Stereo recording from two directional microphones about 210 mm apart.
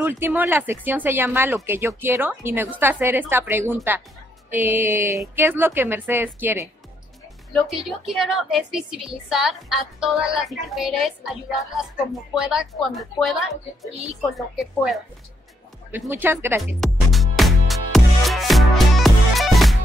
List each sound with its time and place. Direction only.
0.0 s speech: 10° right (ahead or behind)
7.7 s a woman's voice: centre (ahead or behind)
16.8 s music: centre (ahead or behind)